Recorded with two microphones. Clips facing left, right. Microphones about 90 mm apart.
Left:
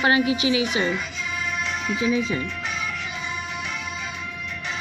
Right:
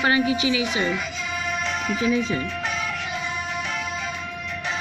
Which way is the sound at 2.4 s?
45° right (ahead or behind).